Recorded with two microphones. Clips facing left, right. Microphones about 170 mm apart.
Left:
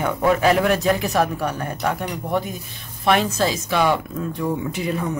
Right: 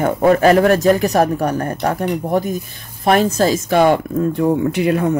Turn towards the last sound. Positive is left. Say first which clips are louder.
# right 8 dB
turn(degrees=-70)  # may be behind; listen again after turning